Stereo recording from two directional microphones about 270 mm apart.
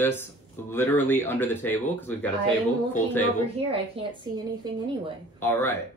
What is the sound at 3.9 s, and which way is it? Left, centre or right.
Speech, centre.